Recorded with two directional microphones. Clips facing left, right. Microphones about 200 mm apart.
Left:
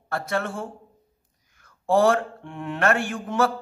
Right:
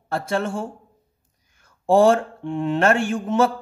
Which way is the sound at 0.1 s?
30° right (ahead or behind).